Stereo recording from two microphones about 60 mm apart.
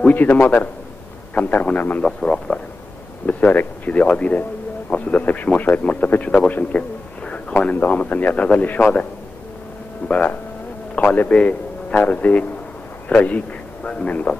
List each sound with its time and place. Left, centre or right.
0.0 s a man's voice: left
7.2 s a sound: centre
7.7 s a man's voice: left
10.0 s a man's voice: left